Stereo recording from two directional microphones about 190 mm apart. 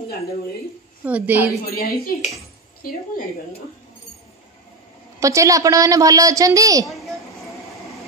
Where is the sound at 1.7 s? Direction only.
50° left (ahead or behind).